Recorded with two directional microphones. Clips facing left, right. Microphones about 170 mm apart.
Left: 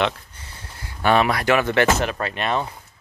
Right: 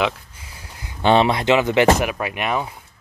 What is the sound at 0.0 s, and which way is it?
Speech, 10° right (ahead or behind).